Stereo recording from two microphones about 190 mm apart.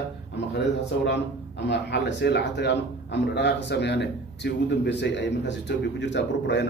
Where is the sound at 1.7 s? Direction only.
65° left (ahead or behind).